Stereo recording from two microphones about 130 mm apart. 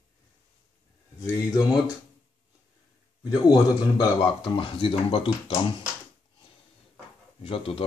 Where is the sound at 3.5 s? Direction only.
35° left (ahead or behind).